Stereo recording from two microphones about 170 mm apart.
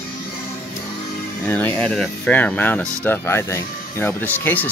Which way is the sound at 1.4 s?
10° left (ahead or behind).